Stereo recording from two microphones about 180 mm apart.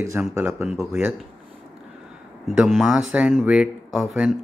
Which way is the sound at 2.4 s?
5° right (ahead or behind).